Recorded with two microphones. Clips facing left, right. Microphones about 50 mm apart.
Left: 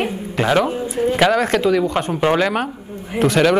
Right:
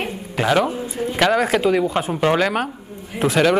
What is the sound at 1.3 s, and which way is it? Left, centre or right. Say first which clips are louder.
Speech: left 1 dB; centre.